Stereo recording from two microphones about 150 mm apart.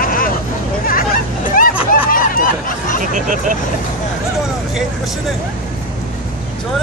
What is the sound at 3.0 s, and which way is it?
Hubbub, 60° right (ahead or behind).